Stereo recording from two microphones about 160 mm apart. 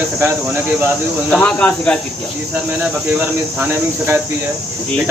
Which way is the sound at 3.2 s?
10° right (ahead or behind).